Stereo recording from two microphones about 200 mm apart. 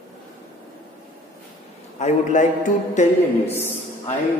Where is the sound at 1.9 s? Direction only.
35° left (ahead or behind).